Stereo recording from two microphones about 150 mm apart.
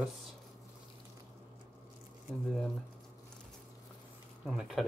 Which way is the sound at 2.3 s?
Centre (ahead or behind).